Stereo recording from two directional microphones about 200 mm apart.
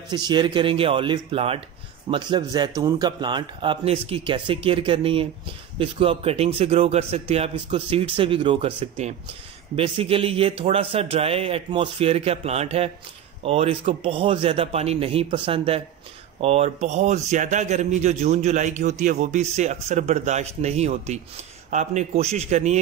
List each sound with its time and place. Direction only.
0.1 s a man's voice: 20° right (ahead or behind)